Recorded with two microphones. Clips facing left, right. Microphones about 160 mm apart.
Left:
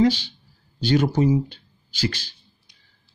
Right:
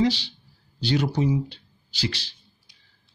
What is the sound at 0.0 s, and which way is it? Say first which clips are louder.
A man's voice: left 4 dB; 50° left (ahead or behind).